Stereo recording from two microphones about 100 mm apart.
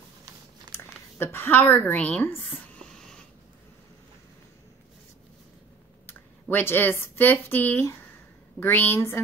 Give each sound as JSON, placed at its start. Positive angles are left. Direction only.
{"t": 0.7, "sound": "a woman's voice", "side_deg": 25}
{"t": 2.6, "sound": "a sound", "side_deg": 5}
{"t": 6.5, "sound": "speech", "side_deg": 20}